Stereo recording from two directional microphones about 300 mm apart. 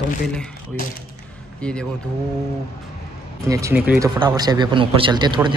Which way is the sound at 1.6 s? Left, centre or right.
Centre.